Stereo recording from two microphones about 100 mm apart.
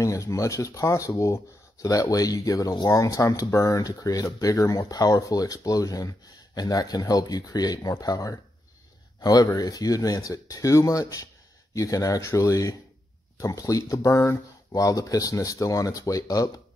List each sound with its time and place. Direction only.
0.0 s speech: 35° left (ahead or behind)